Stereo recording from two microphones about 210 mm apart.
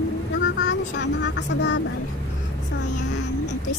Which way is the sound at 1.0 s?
55° left (ahead or behind).